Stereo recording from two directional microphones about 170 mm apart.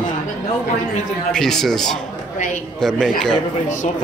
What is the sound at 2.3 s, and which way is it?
Speech, 45° left (ahead or behind).